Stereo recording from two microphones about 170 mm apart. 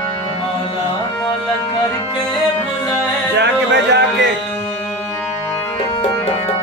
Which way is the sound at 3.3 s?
90° right.